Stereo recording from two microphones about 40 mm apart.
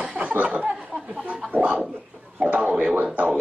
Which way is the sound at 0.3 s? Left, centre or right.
Right.